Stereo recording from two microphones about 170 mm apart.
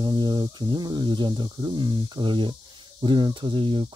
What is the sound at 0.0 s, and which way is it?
Speech, 25° right (ahead or behind).